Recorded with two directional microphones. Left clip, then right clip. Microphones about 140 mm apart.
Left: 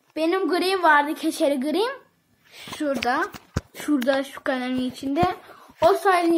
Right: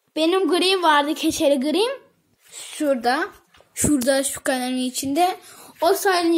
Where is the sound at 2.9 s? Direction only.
35° right (ahead or behind).